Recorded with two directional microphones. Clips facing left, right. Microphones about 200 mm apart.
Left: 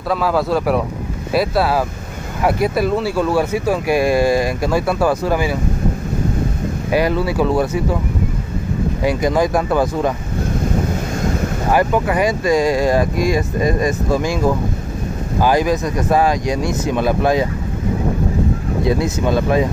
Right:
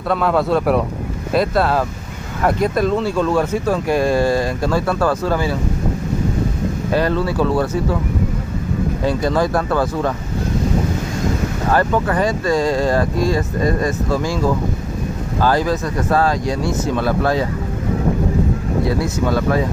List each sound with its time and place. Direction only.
0.1 s speech: centre (ahead or behind)
6.9 s speech: 10° left (ahead or behind)
9.0 s speech: 15° left (ahead or behind)
11.7 s speech: 15° left (ahead or behind)
18.9 s speech: 20° left (ahead or behind)